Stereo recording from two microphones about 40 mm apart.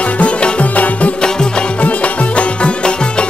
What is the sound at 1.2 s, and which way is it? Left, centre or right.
Music, centre.